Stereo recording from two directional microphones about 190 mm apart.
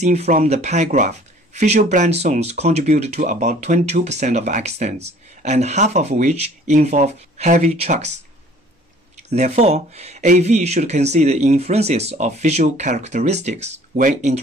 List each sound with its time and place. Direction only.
0.0 s speech: 35° right (ahead or behind)
9.3 s speech: 35° right (ahead or behind)